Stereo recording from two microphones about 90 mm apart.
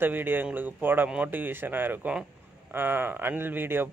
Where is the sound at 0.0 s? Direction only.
20° right (ahead or behind).